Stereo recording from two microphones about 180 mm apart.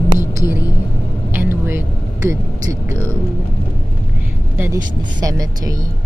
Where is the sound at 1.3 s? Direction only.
10° right (ahead or behind).